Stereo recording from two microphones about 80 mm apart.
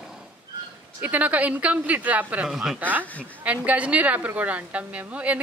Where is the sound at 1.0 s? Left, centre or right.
Centre.